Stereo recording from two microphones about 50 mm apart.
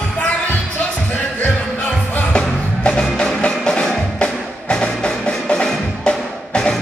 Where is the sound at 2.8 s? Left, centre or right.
Centre.